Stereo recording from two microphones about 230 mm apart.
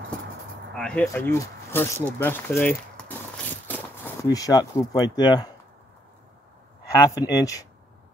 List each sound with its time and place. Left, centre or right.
0.7 s speech: centre
7.0 s speech: centre